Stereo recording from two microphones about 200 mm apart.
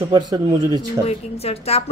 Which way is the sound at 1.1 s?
30° left (ahead or behind).